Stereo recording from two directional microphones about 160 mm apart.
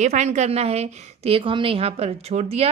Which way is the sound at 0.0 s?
45° right (ahead or behind).